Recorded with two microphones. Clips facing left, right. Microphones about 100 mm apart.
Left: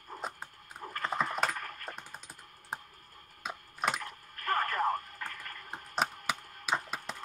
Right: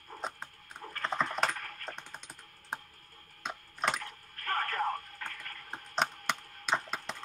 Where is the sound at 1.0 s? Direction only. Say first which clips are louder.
Even; 10° left (ahead or behind).